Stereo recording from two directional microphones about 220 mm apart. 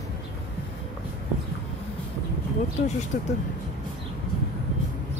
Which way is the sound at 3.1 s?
35° left (ahead or behind).